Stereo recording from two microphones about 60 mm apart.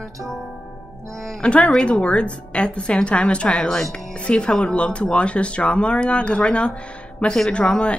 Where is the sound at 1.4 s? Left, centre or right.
Centre.